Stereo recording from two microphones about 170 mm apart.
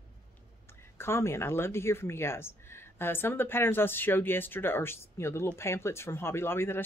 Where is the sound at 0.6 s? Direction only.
15° left (ahead or behind).